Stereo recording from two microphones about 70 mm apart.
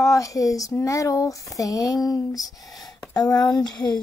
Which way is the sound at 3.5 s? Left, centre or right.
Left.